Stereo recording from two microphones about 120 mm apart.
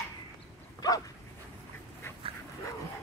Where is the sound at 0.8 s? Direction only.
30° left (ahead or behind).